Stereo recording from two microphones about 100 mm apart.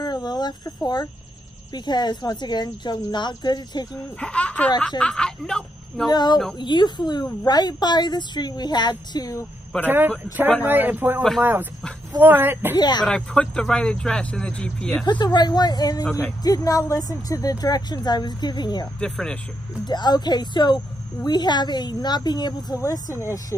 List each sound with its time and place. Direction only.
0.0 s a sound: 45° left (ahead or behind)
1.7 s a woman's voice: 45° left (ahead or behind)
4.2 s speech: 10° left (ahead or behind)
6.0 s a woman's voice: 45° left (ahead or behind)
9.8 s speech: 20° right (ahead or behind)
12.7 s a woman's voice: 45° left (ahead or behind)
13.0 s speech: 10° left (ahead or behind)
15.0 s a woman's voice: 45° left (ahead or behind)
16.1 s speech: 15° left (ahead or behind)
16.4 s a woman's voice: 40° left (ahead or behind)
18.9 s speech: 5° left (ahead or behind)
19.9 s a woman's voice: 45° left (ahead or behind)